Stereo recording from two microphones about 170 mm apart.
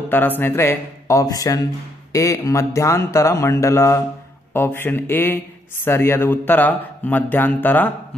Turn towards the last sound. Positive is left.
turn(degrees=10)  # may be behind; listen again after turning